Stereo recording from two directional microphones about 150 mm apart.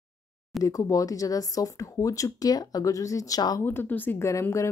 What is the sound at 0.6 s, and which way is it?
A woman's voice, 25° left (ahead or behind).